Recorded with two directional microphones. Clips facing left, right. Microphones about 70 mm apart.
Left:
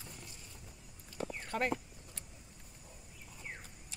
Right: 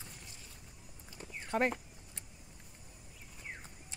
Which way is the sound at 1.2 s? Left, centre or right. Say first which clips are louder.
Left 11 dB; left.